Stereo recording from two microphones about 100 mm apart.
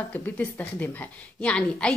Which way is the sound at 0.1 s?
15° left (ahead or behind).